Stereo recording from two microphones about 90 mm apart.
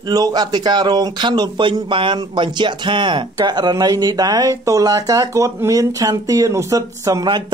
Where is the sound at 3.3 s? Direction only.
50° right (ahead or behind).